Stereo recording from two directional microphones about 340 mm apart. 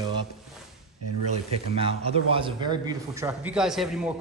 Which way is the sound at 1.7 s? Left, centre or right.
Centre.